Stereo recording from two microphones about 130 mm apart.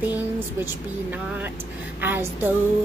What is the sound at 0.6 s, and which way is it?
Female singing, 15° right (ahead or behind).